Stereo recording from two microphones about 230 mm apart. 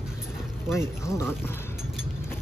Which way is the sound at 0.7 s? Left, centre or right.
Centre.